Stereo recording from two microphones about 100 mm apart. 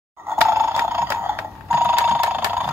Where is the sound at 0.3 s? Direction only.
25° right (ahead or behind).